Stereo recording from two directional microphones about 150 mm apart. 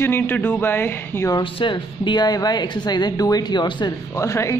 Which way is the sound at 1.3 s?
35° left (ahead or behind).